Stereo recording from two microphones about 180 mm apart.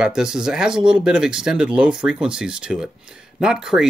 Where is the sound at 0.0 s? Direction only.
5° right (ahead or behind).